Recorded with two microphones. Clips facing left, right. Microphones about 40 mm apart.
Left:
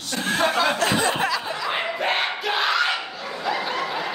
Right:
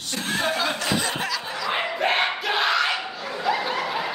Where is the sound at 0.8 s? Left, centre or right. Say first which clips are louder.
Left 4 dB; left.